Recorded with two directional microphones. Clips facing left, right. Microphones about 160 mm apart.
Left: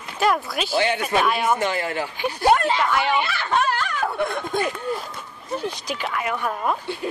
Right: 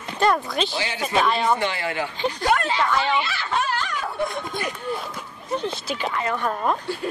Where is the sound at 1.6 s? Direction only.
45° left (ahead or behind).